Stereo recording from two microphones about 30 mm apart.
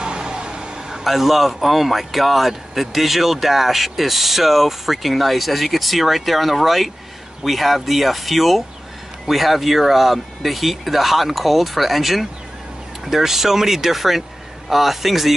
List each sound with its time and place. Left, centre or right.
0.0 s vehicle: right
1.0 s speech: centre